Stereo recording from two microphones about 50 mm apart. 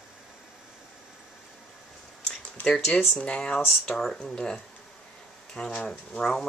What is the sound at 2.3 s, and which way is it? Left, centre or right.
Speech, centre.